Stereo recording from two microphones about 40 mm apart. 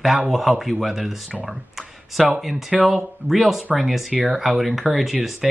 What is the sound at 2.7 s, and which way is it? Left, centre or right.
Speech, centre.